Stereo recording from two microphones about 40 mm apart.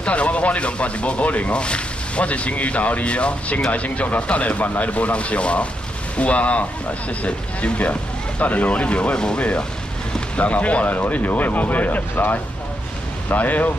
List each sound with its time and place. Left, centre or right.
0.0 s speech: left